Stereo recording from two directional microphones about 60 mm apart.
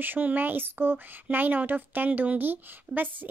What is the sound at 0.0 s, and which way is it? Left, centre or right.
Speech, right.